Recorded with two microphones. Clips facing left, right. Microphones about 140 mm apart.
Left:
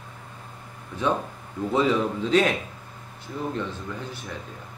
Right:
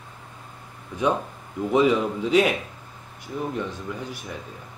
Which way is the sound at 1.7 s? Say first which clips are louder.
Right 3 dB; 15° right (ahead or behind).